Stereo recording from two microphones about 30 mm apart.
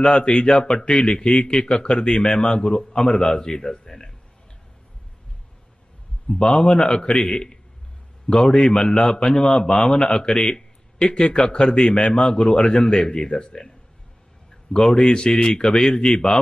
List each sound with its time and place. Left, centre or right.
0.2 s a man's voice: left
0.7 s a man's voice: left; by 4.1 s centre
6.3 s a man's voice: left
8.3 s a man's voice: left
12.4 s a man's voice: left
14.7 s a man's voice: left